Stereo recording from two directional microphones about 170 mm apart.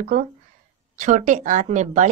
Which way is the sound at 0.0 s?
50° right (ahead or behind).